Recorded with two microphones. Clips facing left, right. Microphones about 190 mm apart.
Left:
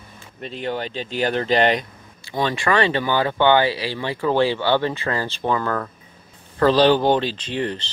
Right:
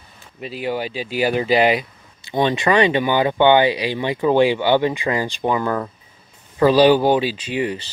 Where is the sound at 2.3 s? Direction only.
20° right (ahead or behind).